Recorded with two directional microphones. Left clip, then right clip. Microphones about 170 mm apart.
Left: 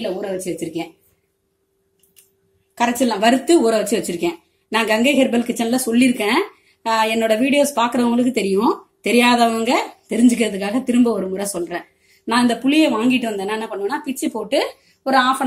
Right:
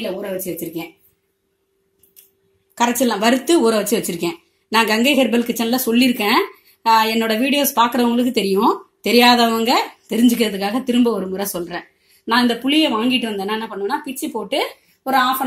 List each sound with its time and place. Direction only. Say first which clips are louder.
2.7 s speech: right 1 dB; 35° right (ahead or behind); by 15.4 s 10° right (ahead or behind)